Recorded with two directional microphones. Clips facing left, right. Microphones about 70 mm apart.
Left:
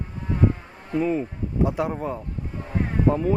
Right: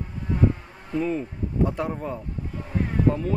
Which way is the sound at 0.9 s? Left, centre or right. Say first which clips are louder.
Left 2 dB; centre.